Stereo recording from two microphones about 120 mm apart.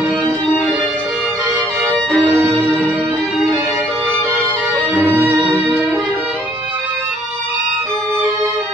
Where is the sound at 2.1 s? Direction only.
20° right (ahead or behind).